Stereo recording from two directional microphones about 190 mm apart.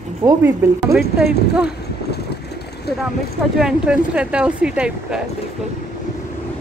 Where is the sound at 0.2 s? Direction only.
15° right (ahead or behind).